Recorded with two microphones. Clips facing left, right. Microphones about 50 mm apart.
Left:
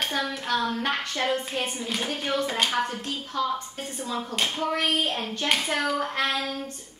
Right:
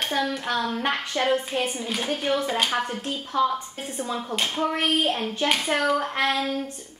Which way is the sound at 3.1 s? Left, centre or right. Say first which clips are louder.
Right 4 dB; centre.